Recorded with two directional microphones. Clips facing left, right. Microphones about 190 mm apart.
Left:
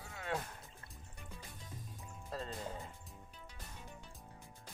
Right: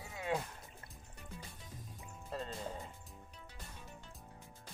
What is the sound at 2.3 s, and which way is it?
Music, centre (ahead or behind).